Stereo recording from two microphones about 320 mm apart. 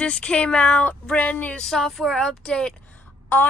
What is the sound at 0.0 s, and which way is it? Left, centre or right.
Speech, centre.